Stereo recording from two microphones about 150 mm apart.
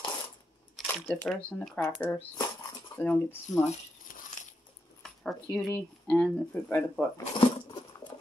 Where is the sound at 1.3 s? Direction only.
5° left (ahead or behind).